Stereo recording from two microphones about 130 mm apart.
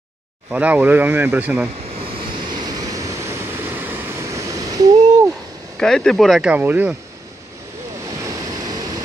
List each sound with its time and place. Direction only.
0.5 s speech: 10° right (ahead or behind)
2.5 s vehicle: 30° right (ahead or behind)
5.8 s speech: 5° left (ahead or behind)
6.5 s speech: 15° right (ahead or behind)
8.0 s waves: 25° right (ahead or behind)